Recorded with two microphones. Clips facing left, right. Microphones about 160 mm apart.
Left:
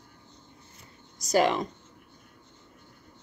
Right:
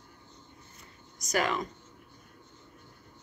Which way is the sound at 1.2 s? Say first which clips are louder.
Left 6 dB; 30° left (ahead or behind).